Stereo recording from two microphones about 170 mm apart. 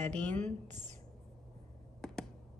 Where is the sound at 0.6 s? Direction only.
45° right (ahead or behind).